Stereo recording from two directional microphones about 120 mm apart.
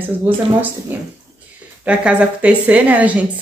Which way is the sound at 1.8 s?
10° right (ahead or behind).